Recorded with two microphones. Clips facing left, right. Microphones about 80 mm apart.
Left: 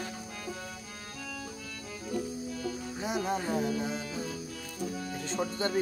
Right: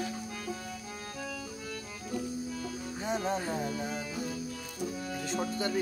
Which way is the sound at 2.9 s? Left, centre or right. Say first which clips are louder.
Right 1 dB; centre.